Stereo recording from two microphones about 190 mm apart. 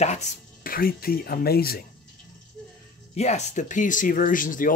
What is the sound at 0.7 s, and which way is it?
Speech, 50° left (ahead or behind).